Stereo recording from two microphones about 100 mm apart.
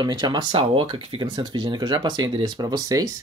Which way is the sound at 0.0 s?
45° right (ahead or behind).